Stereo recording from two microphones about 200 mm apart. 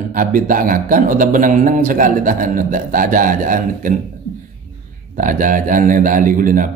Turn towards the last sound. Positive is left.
turn(degrees=-40)  # may be behind; listen again after turning